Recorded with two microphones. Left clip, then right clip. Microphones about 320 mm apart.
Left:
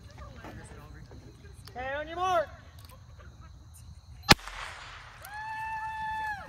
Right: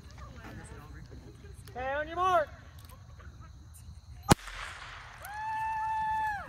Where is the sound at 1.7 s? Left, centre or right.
Centre.